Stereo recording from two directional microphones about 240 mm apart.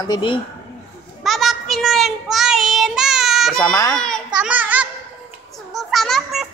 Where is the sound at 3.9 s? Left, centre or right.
Centre.